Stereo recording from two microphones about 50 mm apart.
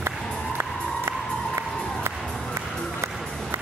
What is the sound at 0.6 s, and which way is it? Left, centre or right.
Music, right.